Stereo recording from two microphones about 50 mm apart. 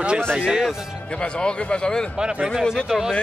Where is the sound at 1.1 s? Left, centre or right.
Centre.